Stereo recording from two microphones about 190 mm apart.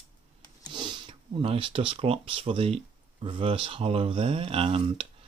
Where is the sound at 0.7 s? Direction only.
25° right (ahead or behind).